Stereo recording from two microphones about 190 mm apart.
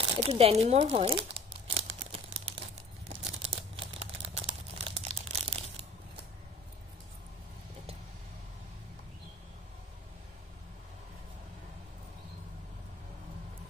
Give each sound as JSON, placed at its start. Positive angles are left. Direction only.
{"t": 0.0, "sound": "speech", "side_deg": -30}
{"t": 1.8, "sound": "crumpling", "side_deg": -30}